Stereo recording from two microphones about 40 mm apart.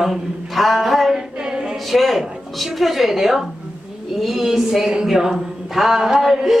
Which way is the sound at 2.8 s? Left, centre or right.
Centre.